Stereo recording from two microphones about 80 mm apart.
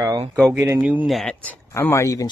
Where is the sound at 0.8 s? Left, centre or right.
Centre.